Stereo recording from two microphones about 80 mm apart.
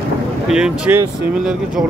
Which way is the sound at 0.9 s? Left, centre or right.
Right.